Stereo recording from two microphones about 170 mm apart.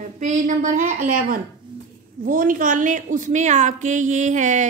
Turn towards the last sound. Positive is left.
turn(degrees=-45)  # may be behind; listen again after turning